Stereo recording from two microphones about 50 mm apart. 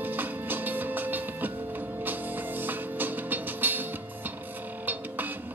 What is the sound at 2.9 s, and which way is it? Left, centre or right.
Music, right.